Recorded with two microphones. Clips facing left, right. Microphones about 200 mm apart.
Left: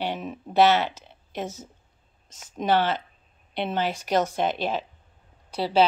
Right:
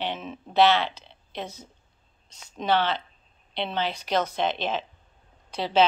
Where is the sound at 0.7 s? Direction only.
45° left (ahead or behind).